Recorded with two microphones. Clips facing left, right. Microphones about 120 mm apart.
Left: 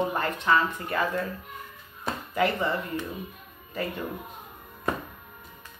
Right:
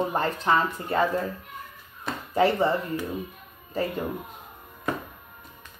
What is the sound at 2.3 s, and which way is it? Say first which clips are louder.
Speech: right 5 dB; 30° right (ahead or behind).